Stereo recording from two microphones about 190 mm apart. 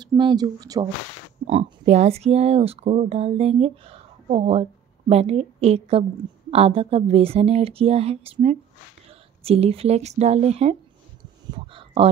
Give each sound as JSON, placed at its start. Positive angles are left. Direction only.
{"t": 0.0, "sound": "speech", "side_deg": -25}
{"t": 1.5, "sound": "speech", "side_deg": -30}
{"t": 11.5, "sound": "a sound", "side_deg": -30}